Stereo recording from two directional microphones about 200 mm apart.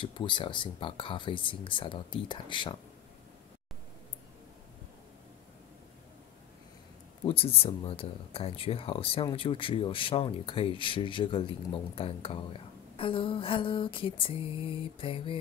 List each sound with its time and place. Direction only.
0.0 s speech: 25° left (ahead or behind)
7.2 s speech: 30° left (ahead or behind)